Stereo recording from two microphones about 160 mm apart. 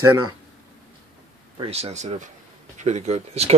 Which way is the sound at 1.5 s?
40° right (ahead or behind).